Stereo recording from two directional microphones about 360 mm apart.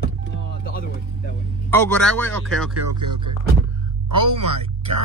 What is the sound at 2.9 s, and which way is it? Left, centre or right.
Speech, right.